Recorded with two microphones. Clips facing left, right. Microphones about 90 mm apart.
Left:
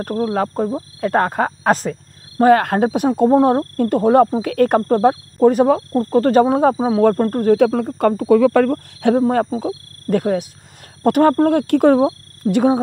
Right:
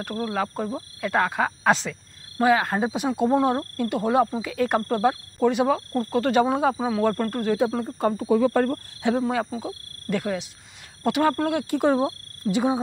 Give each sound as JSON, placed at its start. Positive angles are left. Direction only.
{"t": 0.0, "sound": "speech", "side_deg": 40}
{"t": 2.4, "sound": "speech", "side_deg": 55}
{"t": 7.5, "sound": "speech", "side_deg": 60}
{"t": 8.3, "sound": "speech", "side_deg": 85}
{"t": 9.0, "sound": "speech", "side_deg": 45}